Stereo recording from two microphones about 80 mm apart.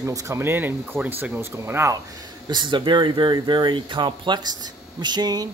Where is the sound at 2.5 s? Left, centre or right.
Right.